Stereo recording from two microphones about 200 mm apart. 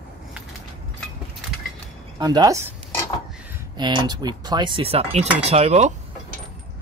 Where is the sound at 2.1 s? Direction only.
20° right (ahead or behind).